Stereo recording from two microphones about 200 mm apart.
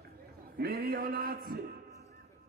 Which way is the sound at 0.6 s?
50° right (ahead or behind).